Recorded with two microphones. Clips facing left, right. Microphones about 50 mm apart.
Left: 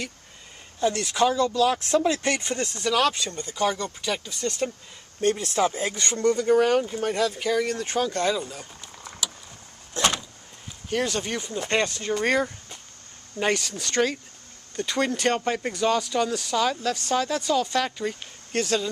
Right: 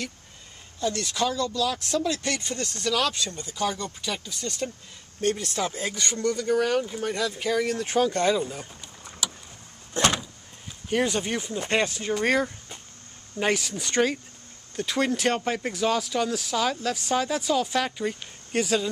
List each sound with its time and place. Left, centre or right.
0.7 s speech: left
7.2 s speech: centre
9.9 s vehicle: right
10.9 s speech: centre